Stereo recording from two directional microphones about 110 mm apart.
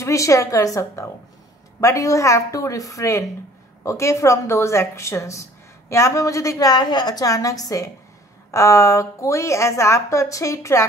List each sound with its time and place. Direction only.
0.0 s a woman's voice: 30° left (ahead or behind)